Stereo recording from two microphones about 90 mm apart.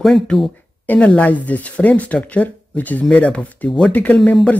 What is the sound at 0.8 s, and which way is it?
Speech, 15° left (ahead or behind).